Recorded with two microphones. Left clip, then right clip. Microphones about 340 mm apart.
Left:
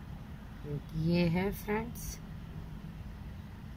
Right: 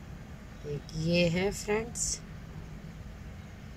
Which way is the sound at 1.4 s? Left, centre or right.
Right.